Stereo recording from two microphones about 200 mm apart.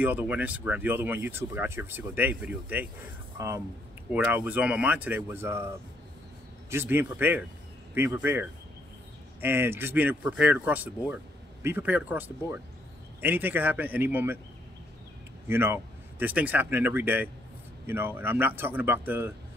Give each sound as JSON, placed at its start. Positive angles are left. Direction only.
{"t": 0.0, "sound": "speech", "side_deg": -10}
{"t": 6.7, "sound": "speech", "side_deg": -10}
{"t": 15.4, "sound": "speech", "side_deg": -10}